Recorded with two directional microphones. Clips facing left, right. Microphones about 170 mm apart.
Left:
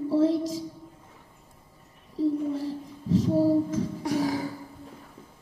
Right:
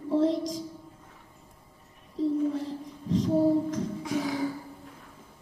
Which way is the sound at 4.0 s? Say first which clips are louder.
Left 5 dB; 35° left (ahead or behind).